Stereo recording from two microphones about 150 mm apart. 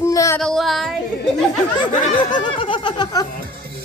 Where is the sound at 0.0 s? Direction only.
20° left (ahead or behind).